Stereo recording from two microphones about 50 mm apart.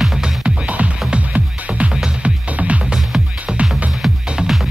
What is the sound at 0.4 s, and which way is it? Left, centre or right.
Music, right.